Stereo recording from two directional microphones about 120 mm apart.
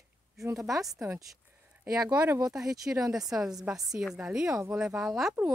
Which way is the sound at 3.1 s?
5° right (ahead or behind).